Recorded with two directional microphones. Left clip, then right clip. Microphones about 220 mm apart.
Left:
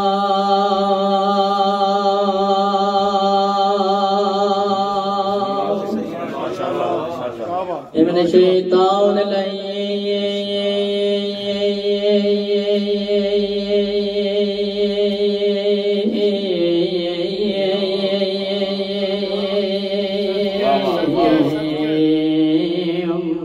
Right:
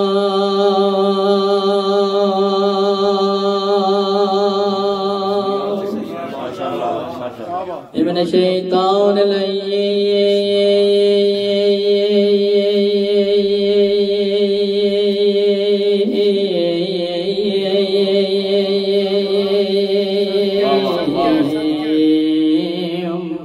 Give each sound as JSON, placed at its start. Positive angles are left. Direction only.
{"t": 0.6, "sound": "music", "side_deg": -50}
{"t": 8.3, "sound": "music", "side_deg": -50}
{"t": 10.6, "sound": "mantra", "side_deg": -50}